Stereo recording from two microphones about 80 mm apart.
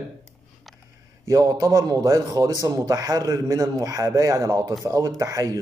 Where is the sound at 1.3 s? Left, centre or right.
Right.